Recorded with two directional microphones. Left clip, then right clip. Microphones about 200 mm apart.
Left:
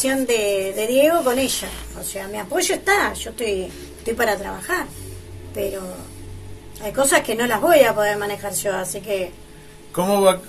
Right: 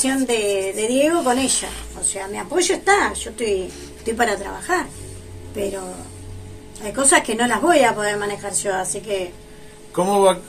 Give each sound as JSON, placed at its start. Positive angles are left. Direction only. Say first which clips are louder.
{"t": 0.0, "sound": "a woman's voice", "louder": "left 1 dB", "side_deg": 0}
{"t": 6.8, "sound": "a woman's voice", "louder": "even", "side_deg": 0}
{"t": 9.9, "sound": "speech", "louder": "right 1 dB", "side_deg": 25}